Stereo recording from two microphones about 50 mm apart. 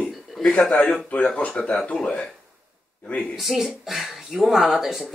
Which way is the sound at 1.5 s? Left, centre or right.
Centre.